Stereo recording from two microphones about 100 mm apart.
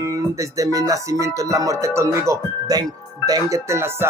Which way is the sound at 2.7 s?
40° right (ahead or behind).